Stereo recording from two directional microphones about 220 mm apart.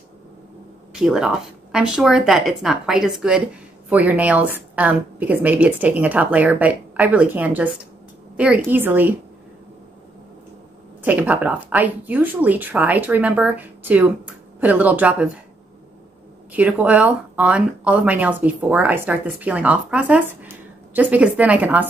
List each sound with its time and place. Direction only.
0.9 s speech: 5° right (ahead or behind)
11.0 s speech: 10° right (ahead or behind)
16.5 s speech: 5° right (ahead or behind)